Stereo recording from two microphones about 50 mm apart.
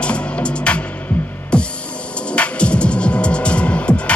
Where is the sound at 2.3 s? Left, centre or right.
Left.